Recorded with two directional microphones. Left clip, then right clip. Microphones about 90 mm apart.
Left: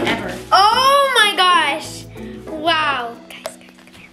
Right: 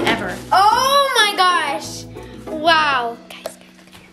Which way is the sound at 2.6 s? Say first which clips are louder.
Right 3 dB; 20° right (ahead or behind).